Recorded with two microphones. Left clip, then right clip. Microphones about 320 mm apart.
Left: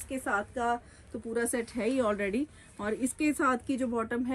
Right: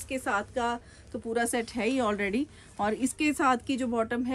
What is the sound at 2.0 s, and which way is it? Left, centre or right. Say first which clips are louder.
Speech: even; right.